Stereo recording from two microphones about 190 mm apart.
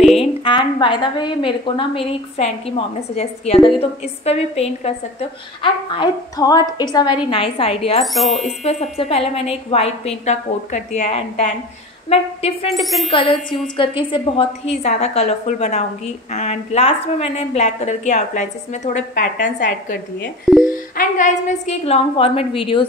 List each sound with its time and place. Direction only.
0.2 s a woman's voice: 25° left (ahead or behind)
8.0 s speech: centre (ahead or behind)
8.6 s a woman's voice: 35° left (ahead or behind)
12.7 s speech: centre (ahead or behind)
13.1 s a woman's voice: 25° left (ahead or behind)